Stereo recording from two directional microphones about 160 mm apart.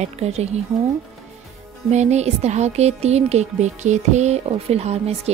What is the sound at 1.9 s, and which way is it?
Speech, 45° right (ahead or behind).